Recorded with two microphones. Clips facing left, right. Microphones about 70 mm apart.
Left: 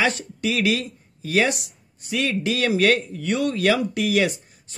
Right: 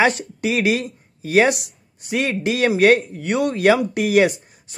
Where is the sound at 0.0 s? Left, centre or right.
Right.